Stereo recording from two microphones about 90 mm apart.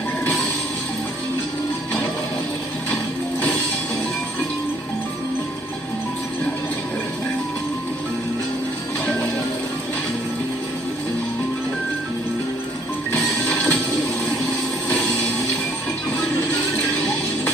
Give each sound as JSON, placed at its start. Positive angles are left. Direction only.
{"t": 13.1, "sound": "music", "side_deg": 20}